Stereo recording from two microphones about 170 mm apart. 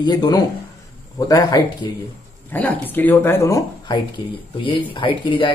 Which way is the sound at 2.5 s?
10° left (ahead or behind).